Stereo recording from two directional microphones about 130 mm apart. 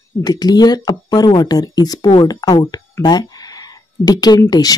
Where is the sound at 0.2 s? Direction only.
30° left (ahead or behind).